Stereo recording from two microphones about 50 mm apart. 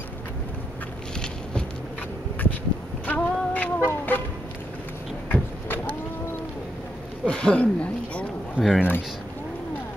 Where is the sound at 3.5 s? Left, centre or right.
Left.